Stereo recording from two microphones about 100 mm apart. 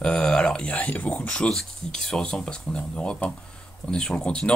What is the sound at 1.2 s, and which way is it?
Speech, 10° left (ahead or behind).